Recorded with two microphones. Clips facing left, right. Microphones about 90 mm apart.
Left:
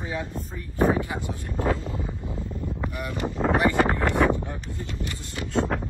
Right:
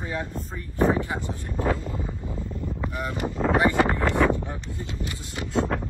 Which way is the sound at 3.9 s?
20° left (ahead or behind).